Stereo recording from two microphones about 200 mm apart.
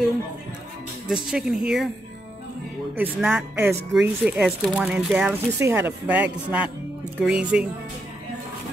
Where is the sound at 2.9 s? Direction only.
10° right (ahead or behind).